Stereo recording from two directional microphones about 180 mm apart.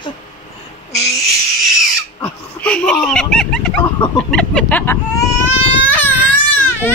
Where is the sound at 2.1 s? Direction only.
10° left (ahead or behind).